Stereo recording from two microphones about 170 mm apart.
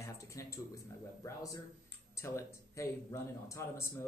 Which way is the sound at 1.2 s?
20° left (ahead or behind).